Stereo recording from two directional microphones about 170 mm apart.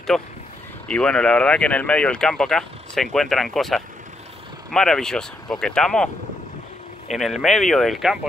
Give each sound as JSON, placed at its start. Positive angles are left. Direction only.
{"t": 0.1, "sound": "speech", "side_deg": 5}
{"t": 7.1, "sound": "speech", "side_deg": 0}